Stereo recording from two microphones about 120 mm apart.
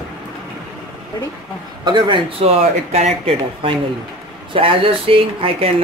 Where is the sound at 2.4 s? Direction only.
60° right (ahead or behind).